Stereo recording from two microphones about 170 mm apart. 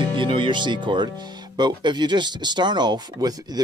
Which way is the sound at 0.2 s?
30° right (ahead or behind).